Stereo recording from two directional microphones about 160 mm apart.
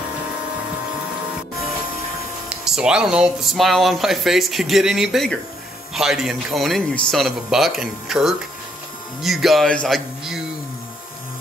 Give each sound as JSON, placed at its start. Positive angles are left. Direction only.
{"t": 2.5, "sound": "speech", "side_deg": -5}